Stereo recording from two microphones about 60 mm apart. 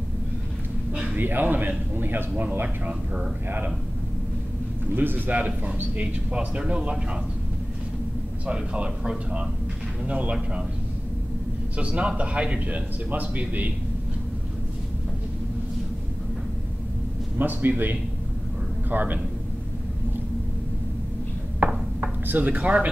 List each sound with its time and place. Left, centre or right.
1.1 s a man's voice: right
4.9 s speech: right
5.7 s a man's voice: centre
8.5 s a man's voice: centre
11.7 s a man's voice: centre
17.4 s a man's voice: right
22.0 s a sound: right
22.6 s speech: centre